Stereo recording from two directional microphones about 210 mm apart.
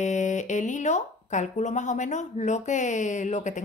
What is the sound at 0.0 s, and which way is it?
Speech, 35° left (ahead or behind).